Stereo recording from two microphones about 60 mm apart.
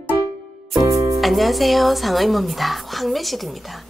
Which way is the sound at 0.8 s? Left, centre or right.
Right.